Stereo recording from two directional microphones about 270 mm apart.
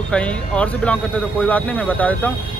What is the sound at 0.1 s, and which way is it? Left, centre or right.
A man's voice, centre.